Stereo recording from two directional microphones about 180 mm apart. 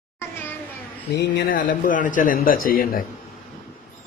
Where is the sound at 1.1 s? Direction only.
70° left (ahead or behind).